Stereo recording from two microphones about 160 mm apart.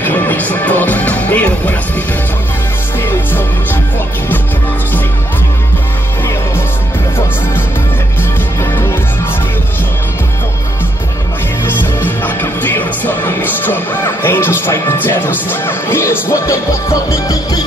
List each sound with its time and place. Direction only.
0.0 s music: 10° left (ahead or behind)
11.6 s music: 15° left (ahead or behind)